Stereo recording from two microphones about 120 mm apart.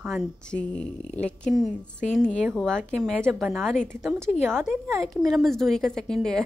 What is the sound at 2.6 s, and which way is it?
A woman's voice, 5° left (ahead or behind).